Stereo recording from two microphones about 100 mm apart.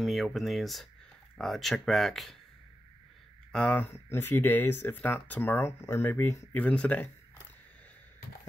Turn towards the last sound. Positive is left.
turn(degrees=15)  # may be behind; listen again after turning